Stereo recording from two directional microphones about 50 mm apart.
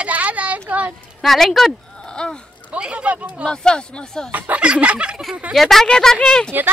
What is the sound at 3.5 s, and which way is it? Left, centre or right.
Speech, centre.